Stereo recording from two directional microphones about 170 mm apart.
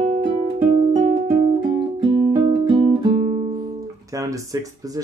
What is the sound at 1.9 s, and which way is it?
Music, 25° right (ahead or behind).